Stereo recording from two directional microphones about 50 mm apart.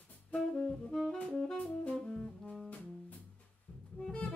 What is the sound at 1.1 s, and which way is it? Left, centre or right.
Saxophone, centre.